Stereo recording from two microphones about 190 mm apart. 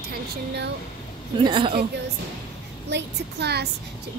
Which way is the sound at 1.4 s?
25° right (ahead or behind).